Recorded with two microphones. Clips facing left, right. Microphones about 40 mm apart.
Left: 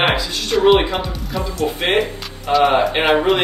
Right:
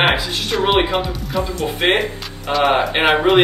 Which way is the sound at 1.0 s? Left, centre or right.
Centre.